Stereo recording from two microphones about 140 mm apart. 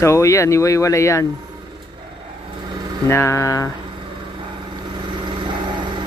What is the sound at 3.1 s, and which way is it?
Speech, 20° left (ahead or behind).